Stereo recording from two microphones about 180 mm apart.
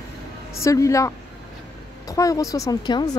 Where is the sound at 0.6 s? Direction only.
15° left (ahead or behind).